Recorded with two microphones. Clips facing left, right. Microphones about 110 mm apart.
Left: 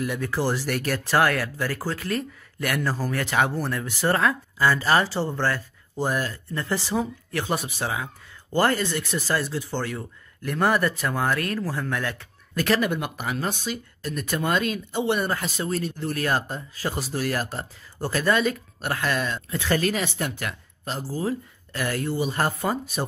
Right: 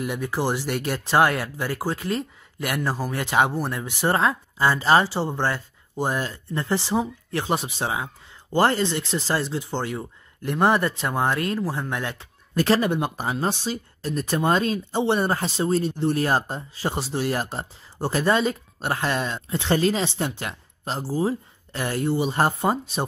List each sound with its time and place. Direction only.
0.0 s speech: 20° right (ahead or behind)